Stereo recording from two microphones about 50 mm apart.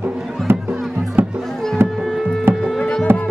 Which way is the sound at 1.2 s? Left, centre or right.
Right.